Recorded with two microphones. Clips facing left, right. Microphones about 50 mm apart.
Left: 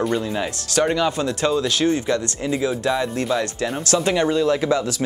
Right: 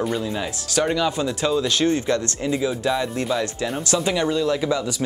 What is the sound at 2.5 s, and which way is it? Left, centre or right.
Speech, centre.